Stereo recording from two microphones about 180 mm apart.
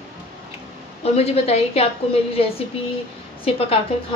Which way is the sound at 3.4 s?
30° left (ahead or behind).